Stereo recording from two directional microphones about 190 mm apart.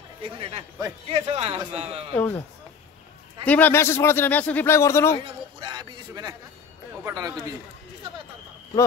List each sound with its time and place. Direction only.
0.2 s a man's voice: 30° right (ahead or behind)
2.1 s speech: 10° left (ahead or behind)
3.4 s speech: 10° left (ahead or behind)
5.2 s speech: 25° right (ahead or behind)